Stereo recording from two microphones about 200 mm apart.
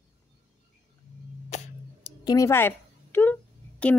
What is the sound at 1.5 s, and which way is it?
Tick, 35° left (ahead or behind).